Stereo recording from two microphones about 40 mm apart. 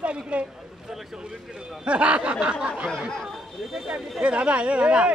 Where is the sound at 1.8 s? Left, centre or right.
Right.